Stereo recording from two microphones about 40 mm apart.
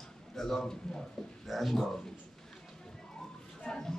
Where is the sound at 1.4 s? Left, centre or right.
Centre.